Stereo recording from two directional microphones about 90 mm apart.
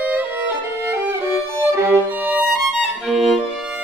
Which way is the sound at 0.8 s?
30° right (ahead or behind).